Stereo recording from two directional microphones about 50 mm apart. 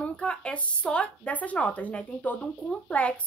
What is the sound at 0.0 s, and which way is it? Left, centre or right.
Speech, left.